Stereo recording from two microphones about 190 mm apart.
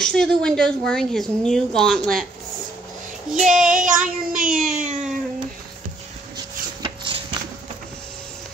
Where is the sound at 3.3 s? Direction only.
45° right (ahead or behind).